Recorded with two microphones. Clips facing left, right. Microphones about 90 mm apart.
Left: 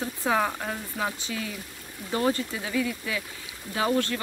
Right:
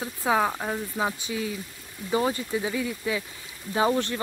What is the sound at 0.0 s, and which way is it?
Speech, 10° right (ahead or behind).